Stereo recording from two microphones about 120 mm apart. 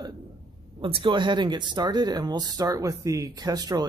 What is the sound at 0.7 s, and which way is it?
Speech, 45° right (ahead or behind).